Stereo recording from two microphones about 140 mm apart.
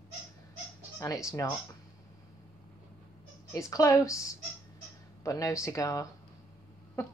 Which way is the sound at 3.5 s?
25° left (ahead or behind).